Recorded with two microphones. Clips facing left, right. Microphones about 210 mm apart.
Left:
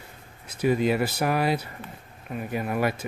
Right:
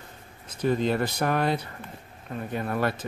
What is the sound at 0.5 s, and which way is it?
Speech, 10° left (ahead or behind).